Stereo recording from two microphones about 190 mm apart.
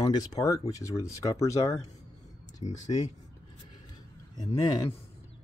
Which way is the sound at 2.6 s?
30° left (ahead or behind).